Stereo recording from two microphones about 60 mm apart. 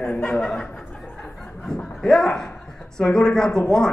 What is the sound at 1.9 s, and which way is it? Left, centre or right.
A man's voice, centre.